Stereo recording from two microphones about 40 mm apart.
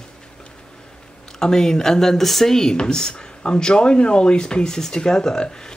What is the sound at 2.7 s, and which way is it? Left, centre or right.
Speech, centre.